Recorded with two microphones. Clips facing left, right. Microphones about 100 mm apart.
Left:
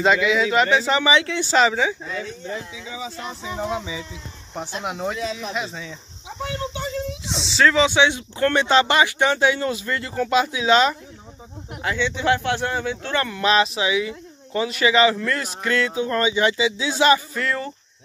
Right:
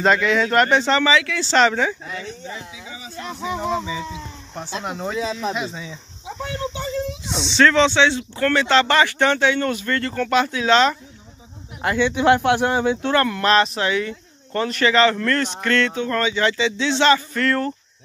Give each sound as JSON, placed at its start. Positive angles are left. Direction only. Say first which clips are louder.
{"t": 0.0, "sound": "speech", "louder": "right 1 dB", "side_deg": 5}
{"t": 2.1, "sound": "speech", "louder": "left 2 dB", "side_deg": -65}
{"t": 3.6, "sound": "speech", "louder": "right 2 dB", "side_deg": 10}
{"t": 7.2, "sound": "speech", "louder": "right 2 dB", "side_deg": 0}
{"t": 11.8, "sound": "speech", "louder": "right 5 dB", "side_deg": -10}
{"t": 13.1, "sound": "speech", "louder": "right 1 dB", "side_deg": 0}